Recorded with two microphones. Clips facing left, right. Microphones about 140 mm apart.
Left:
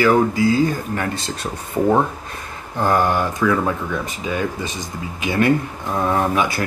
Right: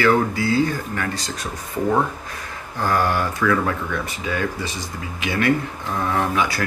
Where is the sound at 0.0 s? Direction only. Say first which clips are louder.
Left 3 dB; 20° left (ahead or behind).